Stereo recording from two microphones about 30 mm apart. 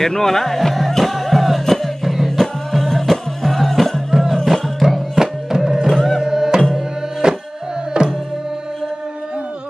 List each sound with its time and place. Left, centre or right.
0.0 s speech: centre
0.7 s music: centre
4.1 s music: centre
4.8 s music: right
5.9 s music: centre
6.2 s music: centre